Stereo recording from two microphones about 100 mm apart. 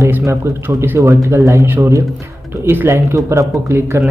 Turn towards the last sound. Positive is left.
turn(degrees=-25)  # may be behind; listen again after turning